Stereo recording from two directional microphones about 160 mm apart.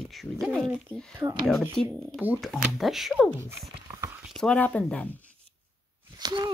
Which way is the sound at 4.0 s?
15° right (ahead or behind).